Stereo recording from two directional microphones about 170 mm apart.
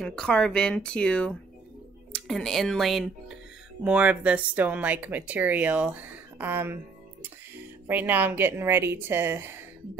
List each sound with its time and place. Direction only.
0.0 s speech: 5° left (ahead or behind); by 6.8 s 10° right (ahead or behind)
7.8 s speech: 10° right (ahead or behind)